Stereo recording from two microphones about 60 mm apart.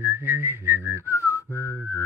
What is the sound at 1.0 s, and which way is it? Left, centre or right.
Whistling, left.